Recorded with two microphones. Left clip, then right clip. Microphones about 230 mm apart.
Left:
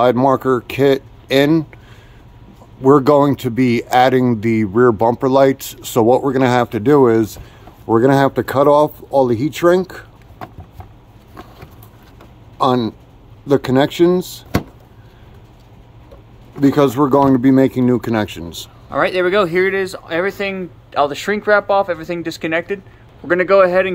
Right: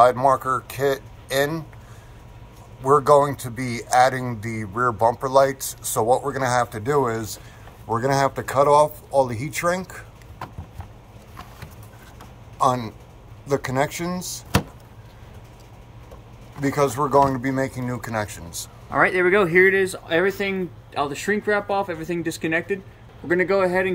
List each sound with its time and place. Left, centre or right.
0.0 s speech: left
2.8 s speech: left
12.6 s a man's voice: left
16.6 s speech: left
18.9 s speech: centre